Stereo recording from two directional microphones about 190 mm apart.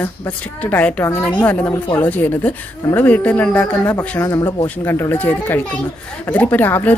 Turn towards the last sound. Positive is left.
turn(degrees=10)  # may be behind; listen again after turning